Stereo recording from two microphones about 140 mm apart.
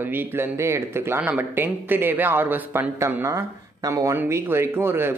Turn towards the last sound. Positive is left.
turn(degrees=-15)  # may be behind; listen again after turning